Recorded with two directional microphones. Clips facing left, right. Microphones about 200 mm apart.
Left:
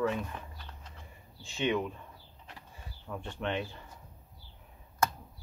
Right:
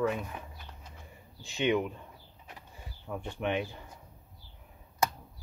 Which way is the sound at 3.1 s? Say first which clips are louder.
Right 3 dB; 10° right (ahead or behind).